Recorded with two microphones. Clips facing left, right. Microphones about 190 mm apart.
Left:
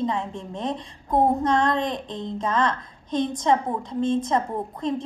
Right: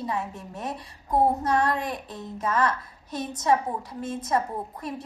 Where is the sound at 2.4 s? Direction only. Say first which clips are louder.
Left 1 dB; 30° left (ahead or behind).